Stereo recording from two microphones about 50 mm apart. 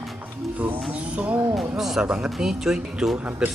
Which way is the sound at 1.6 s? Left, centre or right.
Centre.